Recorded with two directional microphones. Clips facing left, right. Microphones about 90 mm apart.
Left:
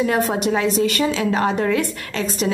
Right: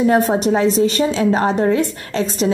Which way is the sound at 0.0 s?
30° right (ahead or behind).